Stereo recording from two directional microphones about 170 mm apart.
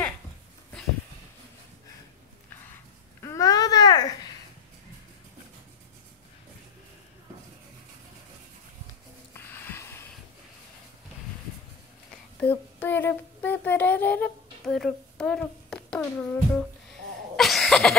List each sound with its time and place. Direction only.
3.2 s babbling: 20° left (ahead or behind)
9.3 s music: 15° left (ahead or behind)
12.4 s a sound: 10° left (ahead or behind)
17.4 s cough: centre (ahead or behind)